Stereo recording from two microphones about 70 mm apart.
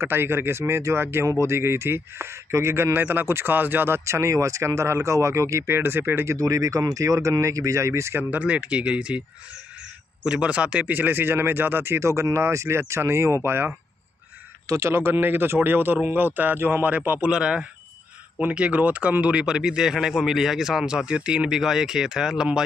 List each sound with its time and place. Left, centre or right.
0.0 s speech: right
4.0 s speech: right
6.3 s speech: right
8.2 s speech: right
10.2 s speech: centre; by 13.7 s right
14.7 s speech: right
17.3 s speech: centre